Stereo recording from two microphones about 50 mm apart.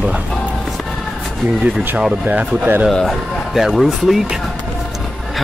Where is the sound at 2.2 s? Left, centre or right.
Right.